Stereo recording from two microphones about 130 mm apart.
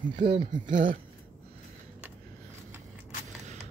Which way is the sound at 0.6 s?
90° right.